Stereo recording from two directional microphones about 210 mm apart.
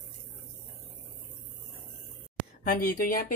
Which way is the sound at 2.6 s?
45° left (ahead or behind).